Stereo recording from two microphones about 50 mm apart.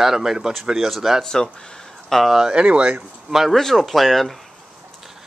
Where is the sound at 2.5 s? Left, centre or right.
Right.